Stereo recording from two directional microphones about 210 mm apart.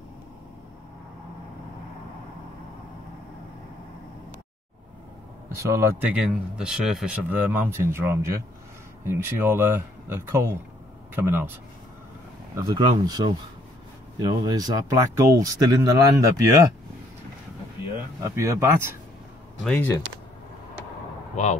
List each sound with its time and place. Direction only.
5.6 s speech: 15° right (ahead or behind)
12.5 s speech: 20° right (ahead or behind)
18.2 s speech: 15° right (ahead or behind)
19.6 s speech: 10° left (ahead or behind)